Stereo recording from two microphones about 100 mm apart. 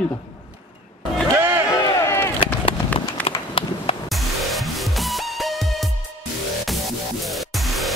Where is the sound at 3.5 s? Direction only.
70° left (ahead or behind).